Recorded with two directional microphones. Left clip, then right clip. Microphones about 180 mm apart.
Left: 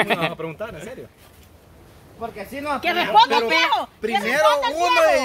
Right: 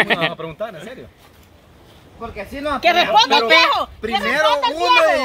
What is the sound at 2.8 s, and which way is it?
Speech, 50° right (ahead or behind).